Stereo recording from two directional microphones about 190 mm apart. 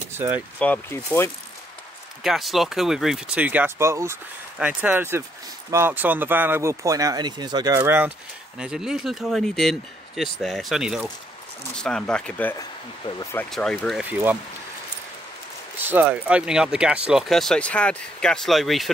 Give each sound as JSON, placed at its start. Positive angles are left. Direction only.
{"t": 0.6, "sound": "speech", "side_deg": 10}
{"t": 2.2, "sound": "speech", "side_deg": 0}
{"t": 8.5, "sound": "speech", "side_deg": -5}
{"t": 12.5, "sound": "speech", "side_deg": 20}
{"t": 13.5, "sound": "speech", "side_deg": 0}
{"t": 15.8, "sound": "speech", "side_deg": -10}